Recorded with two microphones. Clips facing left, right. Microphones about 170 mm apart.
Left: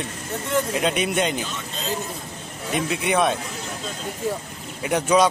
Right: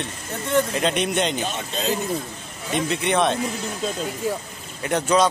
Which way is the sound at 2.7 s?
5° left (ahead or behind).